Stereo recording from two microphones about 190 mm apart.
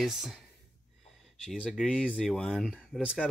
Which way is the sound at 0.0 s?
Centre (ahead or behind).